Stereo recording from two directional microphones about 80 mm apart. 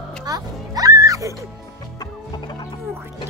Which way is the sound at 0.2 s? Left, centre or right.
Right.